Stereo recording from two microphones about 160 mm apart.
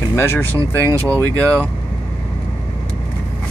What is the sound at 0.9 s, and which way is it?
Speech, 20° right (ahead or behind).